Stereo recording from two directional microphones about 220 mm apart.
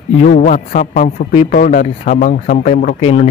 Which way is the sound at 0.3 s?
35° left (ahead or behind).